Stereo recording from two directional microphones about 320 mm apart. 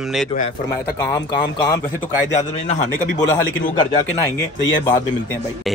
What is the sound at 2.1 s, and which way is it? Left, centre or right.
Speech, left.